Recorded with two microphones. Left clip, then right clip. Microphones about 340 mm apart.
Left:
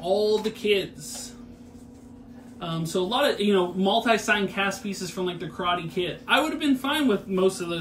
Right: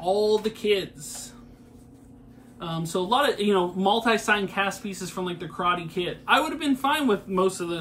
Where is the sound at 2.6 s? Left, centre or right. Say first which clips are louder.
Left 1 dB; centre.